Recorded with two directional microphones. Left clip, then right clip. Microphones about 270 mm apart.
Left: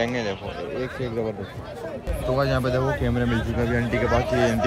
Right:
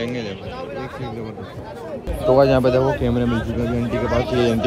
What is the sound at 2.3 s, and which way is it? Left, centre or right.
Speech, left.